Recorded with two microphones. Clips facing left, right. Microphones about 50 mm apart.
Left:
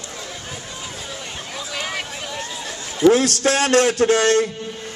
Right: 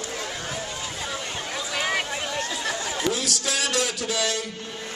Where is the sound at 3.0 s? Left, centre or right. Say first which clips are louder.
Left 15 dB; left.